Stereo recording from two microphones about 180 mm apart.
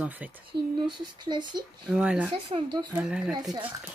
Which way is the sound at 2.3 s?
25° right (ahead or behind).